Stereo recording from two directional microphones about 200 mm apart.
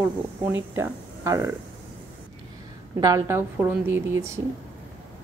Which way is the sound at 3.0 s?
15° right (ahead or behind).